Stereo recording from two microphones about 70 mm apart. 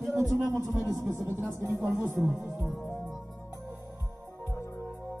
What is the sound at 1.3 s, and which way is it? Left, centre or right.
Speech, right.